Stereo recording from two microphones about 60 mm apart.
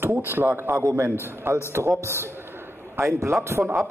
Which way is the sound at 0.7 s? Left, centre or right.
Right.